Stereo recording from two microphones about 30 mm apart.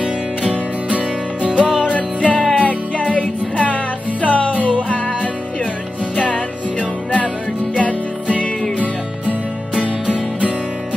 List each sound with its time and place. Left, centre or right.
0.0 s music: right
1.9 s music: left
6.1 s music: left
7.8 s music: left